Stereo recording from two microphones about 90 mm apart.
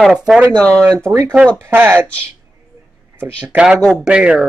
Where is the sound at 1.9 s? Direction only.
15° left (ahead or behind).